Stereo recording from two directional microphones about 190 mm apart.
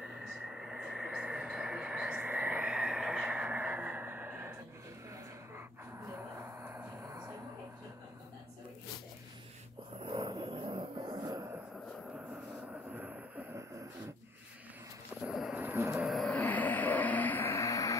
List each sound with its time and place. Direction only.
0.0 s television: 5° right (ahead or behind)
5.9 s a sound: 15° right (ahead or behind)
10.0 s music: 25° right (ahead or behind)
12.3 s vehicle: 10° right (ahead or behind)
15.2 s vehicle: 5° right (ahead or behind)
16.1 s vehicle: 5° left (ahead or behind)